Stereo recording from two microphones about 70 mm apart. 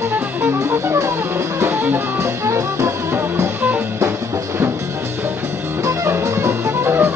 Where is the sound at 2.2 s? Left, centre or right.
Right.